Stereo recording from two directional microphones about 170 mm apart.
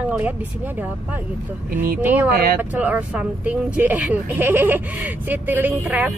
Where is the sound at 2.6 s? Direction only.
10° right (ahead or behind).